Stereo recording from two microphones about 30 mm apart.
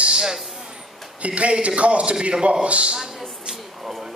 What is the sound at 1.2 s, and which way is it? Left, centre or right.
A man's voice, right.